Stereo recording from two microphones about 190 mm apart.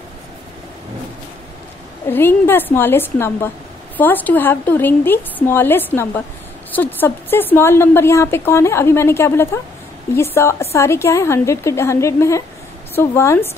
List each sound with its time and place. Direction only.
2.0 s a woman's voice: 10° left (ahead or behind)